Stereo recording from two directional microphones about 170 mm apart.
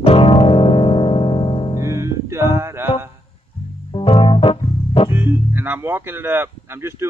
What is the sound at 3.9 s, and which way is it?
Organ, 30° left (ahead or behind).